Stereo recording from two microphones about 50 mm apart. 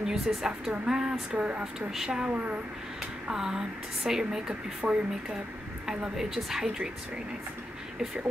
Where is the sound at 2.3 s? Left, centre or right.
Right.